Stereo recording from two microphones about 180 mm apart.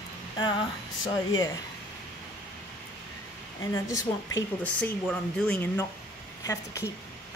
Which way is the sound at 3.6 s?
15° left (ahead or behind).